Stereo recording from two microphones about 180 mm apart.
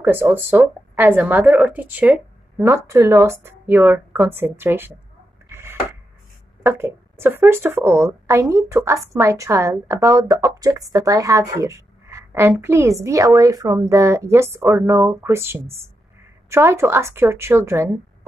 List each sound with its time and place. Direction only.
0.0 s a woman's voice: 10° right (ahead or behind)
5.5 s a sound: 15° right (ahead or behind)
6.6 s a woman's voice: 15° right (ahead or behind)